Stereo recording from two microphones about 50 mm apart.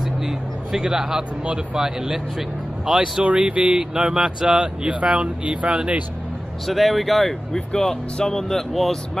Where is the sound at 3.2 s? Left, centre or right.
Right.